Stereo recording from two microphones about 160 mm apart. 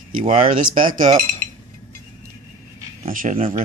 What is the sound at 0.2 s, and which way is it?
Cutlery, 55° right (ahead or behind).